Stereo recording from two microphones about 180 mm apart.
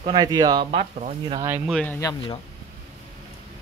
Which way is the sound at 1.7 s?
10° left (ahead or behind).